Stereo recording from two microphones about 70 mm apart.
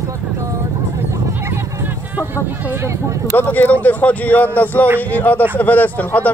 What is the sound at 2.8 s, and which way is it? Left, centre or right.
Speech, right.